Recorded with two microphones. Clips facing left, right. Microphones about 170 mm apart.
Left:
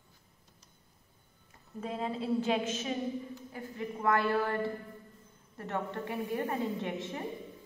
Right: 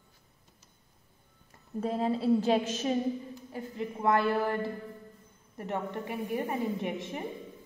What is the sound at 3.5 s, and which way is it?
A woman's voice, 20° right (ahead or behind).